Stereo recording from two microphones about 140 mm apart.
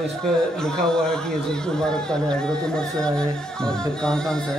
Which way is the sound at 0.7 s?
5° left (ahead or behind).